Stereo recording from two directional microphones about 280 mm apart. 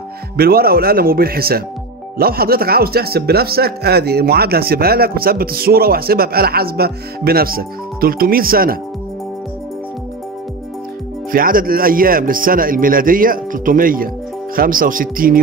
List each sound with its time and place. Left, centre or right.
0.4 s speech: right
11.3 s speech: right